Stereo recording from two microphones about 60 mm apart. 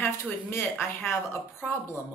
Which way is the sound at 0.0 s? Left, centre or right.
Left.